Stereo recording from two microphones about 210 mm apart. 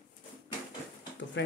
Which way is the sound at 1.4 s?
55° left (ahead or behind).